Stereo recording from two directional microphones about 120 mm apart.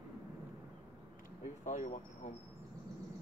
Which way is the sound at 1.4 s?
90° left.